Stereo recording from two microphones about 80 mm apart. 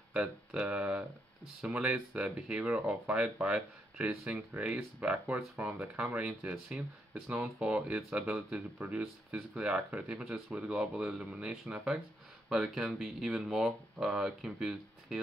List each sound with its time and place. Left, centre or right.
0.1 s speech: centre